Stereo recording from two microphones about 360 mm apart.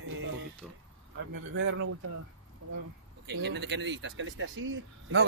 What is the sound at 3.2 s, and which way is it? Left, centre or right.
Speech, right.